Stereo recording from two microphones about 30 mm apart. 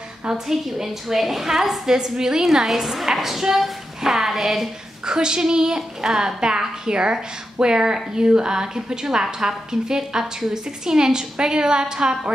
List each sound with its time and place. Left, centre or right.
0.5 s a woman's voice: centre
2.4 s a woman's voice: centre
5.0 s speech: right